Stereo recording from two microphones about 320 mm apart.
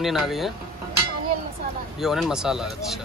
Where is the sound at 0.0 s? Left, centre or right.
Centre.